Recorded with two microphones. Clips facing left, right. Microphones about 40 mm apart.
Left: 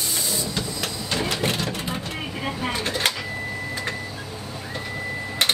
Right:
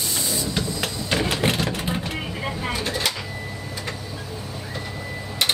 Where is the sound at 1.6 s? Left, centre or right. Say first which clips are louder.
Right 2 dB; right.